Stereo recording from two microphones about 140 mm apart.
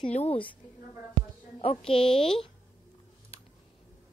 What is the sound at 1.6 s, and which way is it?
Speech, 40° left (ahead or behind).